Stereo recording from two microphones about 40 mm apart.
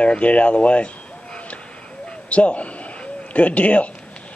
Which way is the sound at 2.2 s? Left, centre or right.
Left.